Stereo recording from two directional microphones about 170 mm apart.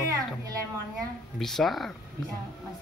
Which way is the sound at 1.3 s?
Centre (ahead or behind).